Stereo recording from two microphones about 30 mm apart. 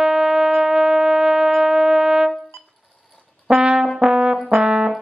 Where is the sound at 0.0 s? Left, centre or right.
Centre.